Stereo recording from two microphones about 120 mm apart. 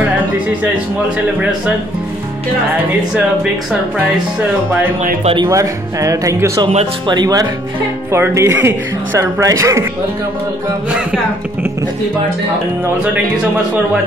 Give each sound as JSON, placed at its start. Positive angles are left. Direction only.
{"t": 2.9, "sound": "speech", "side_deg": -10}
{"t": 5.2, "sound": "speech", "side_deg": -45}
{"t": 5.5, "sound": "speech", "side_deg": -25}
{"t": 8.1, "sound": "speech", "side_deg": -20}